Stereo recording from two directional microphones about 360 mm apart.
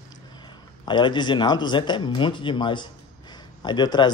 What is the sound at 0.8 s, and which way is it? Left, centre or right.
Speech, centre.